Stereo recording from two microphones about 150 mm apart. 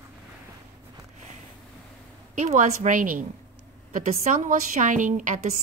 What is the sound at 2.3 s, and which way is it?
A woman's voice, 55° right (ahead or behind).